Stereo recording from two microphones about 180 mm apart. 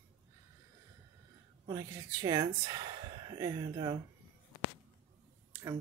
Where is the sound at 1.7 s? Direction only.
15° right (ahead or behind).